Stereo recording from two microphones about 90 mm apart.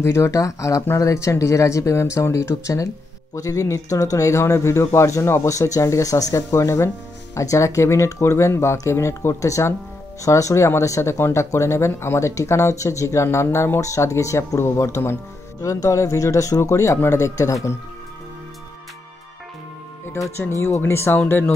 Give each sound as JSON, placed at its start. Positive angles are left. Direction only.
{"t": 0.0, "sound": "speech", "side_deg": 35}
{"t": 20.1, "sound": "speech", "side_deg": 30}